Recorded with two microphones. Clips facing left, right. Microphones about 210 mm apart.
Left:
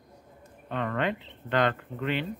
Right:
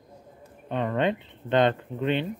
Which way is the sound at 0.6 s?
20° right (ahead or behind).